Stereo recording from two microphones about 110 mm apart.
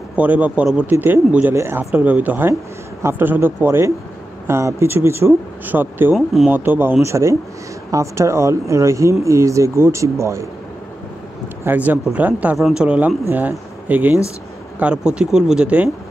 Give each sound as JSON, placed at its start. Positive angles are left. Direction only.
{"t": 0.1, "sound": "speech", "side_deg": -15}
{"t": 6.1, "sound": "speech", "side_deg": 0}
{"t": 6.5, "sound": "speech", "side_deg": -20}
{"t": 11.6, "sound": "speech", "side_deg": -15}